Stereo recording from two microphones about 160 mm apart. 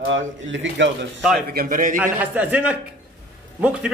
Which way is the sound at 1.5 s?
65° right (ahead or behind).